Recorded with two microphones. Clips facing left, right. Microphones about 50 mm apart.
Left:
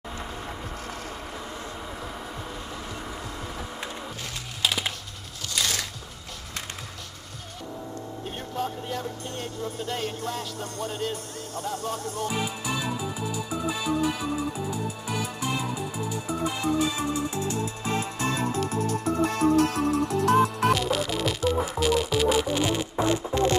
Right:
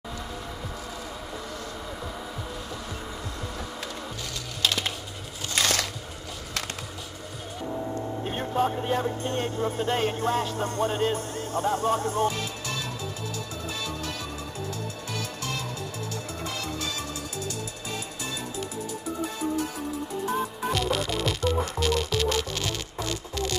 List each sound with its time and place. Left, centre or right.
4.6 s typing: centre
5.5 s music: right
8.4 s speech: right
12.3 s music: centre; by 18.6 s left
18.8 s music: left
20.7 s music: centre; by 23.5 s left